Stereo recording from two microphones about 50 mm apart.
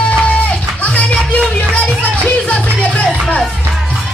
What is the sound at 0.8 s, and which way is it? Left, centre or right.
Music, left.